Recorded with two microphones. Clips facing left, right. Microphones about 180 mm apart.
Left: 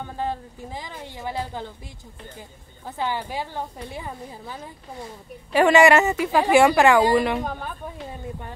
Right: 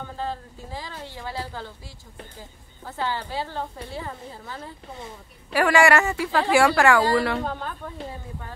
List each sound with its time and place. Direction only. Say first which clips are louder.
0.2 s a woman's voice: left 3 dB; 15° left (ahead or behind)
2.8 s a woman's voice: left 1 dB; 15° left (ahead or behind)